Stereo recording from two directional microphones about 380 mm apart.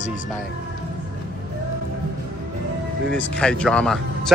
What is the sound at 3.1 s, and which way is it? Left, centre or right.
Speech, centre.